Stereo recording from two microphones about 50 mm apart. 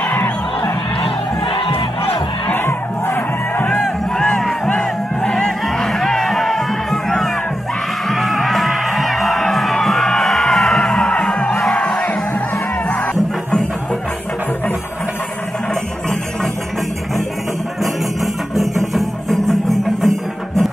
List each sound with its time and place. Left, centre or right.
2.5 s battle cry: left
3.6 s crowd: centre
8.1 s music: centre
11.1 s music: left
11.8 s crowd: left
18.2 s music: centre